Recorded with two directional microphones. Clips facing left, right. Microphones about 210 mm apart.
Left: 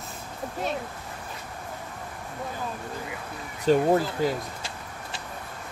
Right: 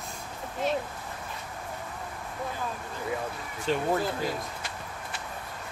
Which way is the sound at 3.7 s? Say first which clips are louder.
Left 8 dB; 40° left (ahead or behind).